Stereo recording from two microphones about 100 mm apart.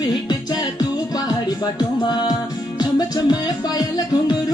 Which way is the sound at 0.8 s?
45° left (ahead or behind).